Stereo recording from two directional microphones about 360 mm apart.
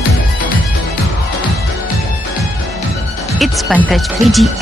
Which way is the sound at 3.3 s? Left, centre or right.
Centre.